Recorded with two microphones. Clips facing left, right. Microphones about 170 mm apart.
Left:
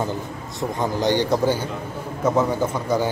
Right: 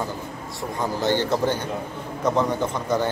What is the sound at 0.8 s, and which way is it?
A man's voice, 15° left (ahead or behind).